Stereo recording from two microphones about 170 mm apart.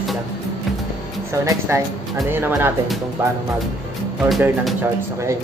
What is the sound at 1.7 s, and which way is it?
Speech, 15° right (ahead or behind).